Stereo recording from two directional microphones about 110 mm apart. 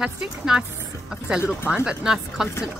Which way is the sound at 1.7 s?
5° right (ahead or behind).